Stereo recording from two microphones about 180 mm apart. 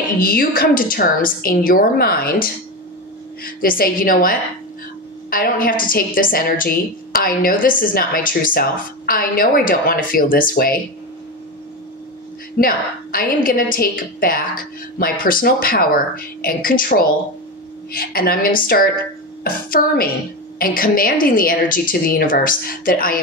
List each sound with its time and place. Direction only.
0.2 s a woman's voice: 55° left (ahead or behind)
12.5 s a woman's voice: 55° left (ahead or behind)